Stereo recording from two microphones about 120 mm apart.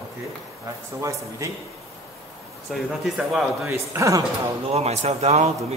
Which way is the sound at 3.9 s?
25° right (ahead or behind).